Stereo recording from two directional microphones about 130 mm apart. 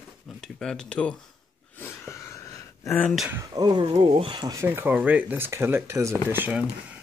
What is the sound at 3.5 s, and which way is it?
Speech, 30° right (ahead or behind).